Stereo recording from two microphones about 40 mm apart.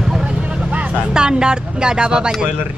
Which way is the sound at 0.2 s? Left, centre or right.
Right.